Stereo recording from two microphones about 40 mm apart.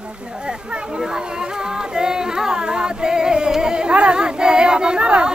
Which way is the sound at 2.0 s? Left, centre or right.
Centre.